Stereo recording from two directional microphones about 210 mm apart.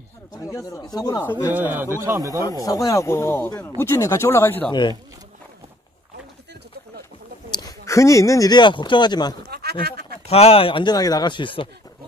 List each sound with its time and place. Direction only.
0.5 s speech: 15° left (ahead or behind)
1.5 s a man's voice: 10° right (ahead or behind)
2.4 s speech: 15° left (ahead or behind)
4.6 s speech: 20° left (ahead or behind)
7.5 s speech: 15° left (ahead or behind)
9.4 s a sound: 50° right (ahead or behind)
10.2 s speech: 30° left (ahead or behind)